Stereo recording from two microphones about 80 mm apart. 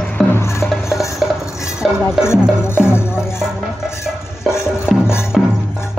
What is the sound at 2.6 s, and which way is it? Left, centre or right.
Music, left.